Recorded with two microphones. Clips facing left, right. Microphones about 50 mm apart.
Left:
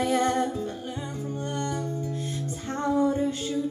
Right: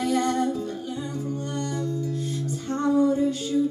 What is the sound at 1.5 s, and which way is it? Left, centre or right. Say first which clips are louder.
Music: right 2 dB; left.